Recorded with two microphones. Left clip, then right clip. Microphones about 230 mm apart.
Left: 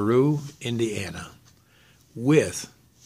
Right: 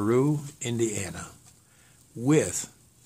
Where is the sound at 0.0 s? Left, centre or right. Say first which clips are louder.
Left 3 dB; centre.